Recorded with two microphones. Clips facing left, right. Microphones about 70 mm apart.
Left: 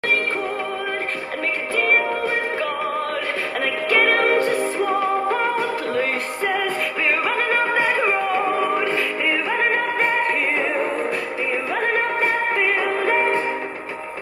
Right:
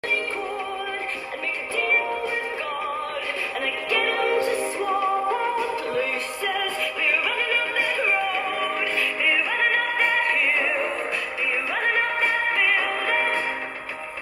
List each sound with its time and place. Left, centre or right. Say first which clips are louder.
1.8 s music: left 4 dB; left
3.6 s music: left 7 dB; left
9.5 s music: left 3 dB; left
11.7 s music: left 2 dB; left